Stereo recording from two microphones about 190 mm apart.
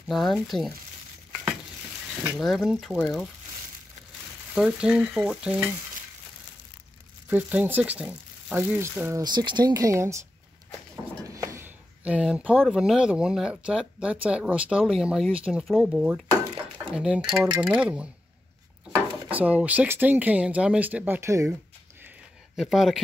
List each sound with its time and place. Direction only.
0.1 s speech: centre (ahead or behind)
2.2 s speech: centre (ahead or behind)
4.6 s speech: 5° right (ahead or behind)
7.2 s speech: 10° right (ahead or behind)
9.2 s speech: 25° right (ahead or behind)
11.2 s speech: 15° right (ahead or behind)
19.4 s speech: 5° right (ahead or behind)
22.6 s speech: centre (ahead or behind)